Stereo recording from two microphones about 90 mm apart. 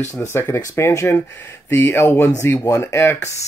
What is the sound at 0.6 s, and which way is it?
Speech, 40° left (ahead or behind).